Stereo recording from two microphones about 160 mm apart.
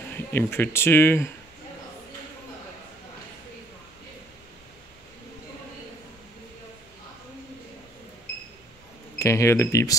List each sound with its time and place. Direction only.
0.1 s speech: 10° left (ahead or behind)
9.2 s speech: 15° left (ahead or behind)